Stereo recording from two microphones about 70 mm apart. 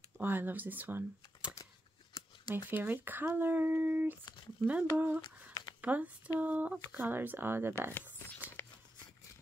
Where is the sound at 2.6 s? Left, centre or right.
Right.